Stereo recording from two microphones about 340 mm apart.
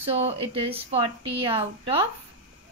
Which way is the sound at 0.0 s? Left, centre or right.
Centre.